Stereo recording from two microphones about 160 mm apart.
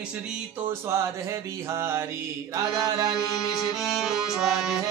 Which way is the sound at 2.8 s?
25° right (ahead or behind).